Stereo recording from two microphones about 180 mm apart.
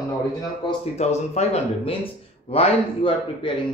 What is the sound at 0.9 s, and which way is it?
A man's voice, 40° left (ahead or behind).